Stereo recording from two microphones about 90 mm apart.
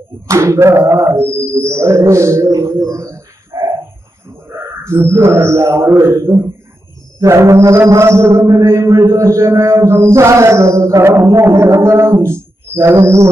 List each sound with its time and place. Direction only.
0.3 s a man's voice: 30° right (ahead or behind)
4.8 s a man's voice: 30° right (ahead or behind)
5.9 s a man's voice: 45° right (ahead or behind)